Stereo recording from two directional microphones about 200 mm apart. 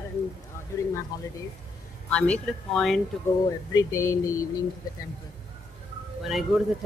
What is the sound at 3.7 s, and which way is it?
Speech, 15° left (ahead or behind).